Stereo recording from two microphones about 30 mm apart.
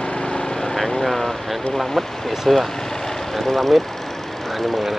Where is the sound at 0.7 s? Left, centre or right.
Centre.